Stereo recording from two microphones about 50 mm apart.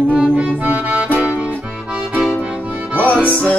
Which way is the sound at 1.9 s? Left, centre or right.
Centre.